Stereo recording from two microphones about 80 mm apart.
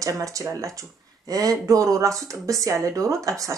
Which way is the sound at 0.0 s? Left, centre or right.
Right.